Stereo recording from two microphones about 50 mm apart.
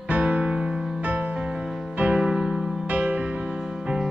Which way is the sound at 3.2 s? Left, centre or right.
Centre.